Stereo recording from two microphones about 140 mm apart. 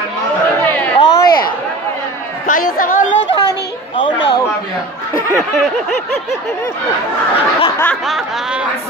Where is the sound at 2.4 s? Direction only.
75° left (ahead or behind).